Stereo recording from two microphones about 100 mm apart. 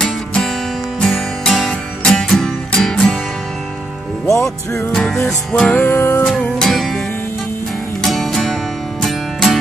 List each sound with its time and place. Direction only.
0.0 s music: 5° left (ahead or behind)
4.3 s music: 25° left (ahead or behind)
4.9 s music: 5° left (ahead or behind)
5.8 s music: 25° left (ahead or behind)
6.2 s music: 5° left (ahead or behind)
8.0 s music: centre (ahead or behind)